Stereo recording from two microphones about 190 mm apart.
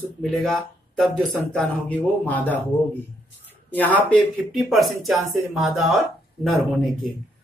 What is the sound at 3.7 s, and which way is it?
Speech, 10° left (ahead or behind).